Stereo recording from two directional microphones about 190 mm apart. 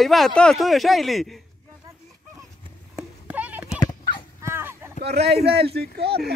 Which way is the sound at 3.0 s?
10° right (ahead or behind).